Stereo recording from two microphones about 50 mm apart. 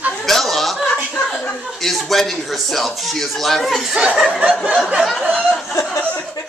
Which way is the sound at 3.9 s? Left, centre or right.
Right.